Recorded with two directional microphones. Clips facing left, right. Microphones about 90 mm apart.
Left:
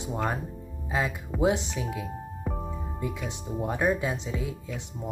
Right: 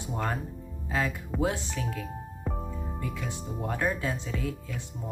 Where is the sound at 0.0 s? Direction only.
15° left (ahead or behind).